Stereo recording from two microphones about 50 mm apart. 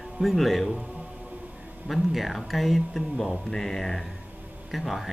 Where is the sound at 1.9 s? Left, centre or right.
Centre.